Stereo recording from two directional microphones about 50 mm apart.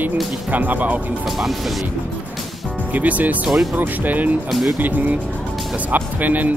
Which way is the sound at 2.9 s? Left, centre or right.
Right.